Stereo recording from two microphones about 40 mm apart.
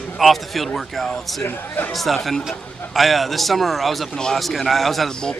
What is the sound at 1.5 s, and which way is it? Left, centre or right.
Speech, left.